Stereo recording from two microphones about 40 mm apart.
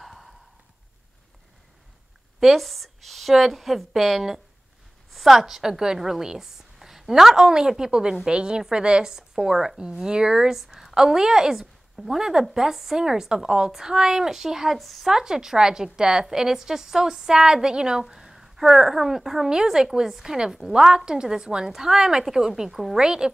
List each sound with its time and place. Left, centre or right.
0.0 s a sound: centre
2.4 s a woman's voice: centre
10.0 s a woman's voice: centre
10.6 s a woman's voice: centre
14.8 s a woman's voice: centre
15.0 s a woman's voice: centre
22.7 s a woman's voice: centre
22.9 s speech: centre